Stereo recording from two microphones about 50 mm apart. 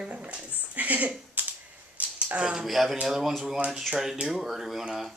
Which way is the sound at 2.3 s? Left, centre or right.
Centre.